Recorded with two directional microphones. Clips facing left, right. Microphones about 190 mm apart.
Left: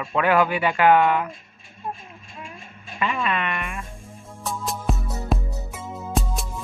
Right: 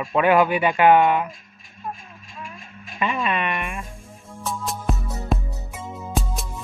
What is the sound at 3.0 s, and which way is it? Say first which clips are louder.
Music: right 1 dB; 20° right (ahead or behind).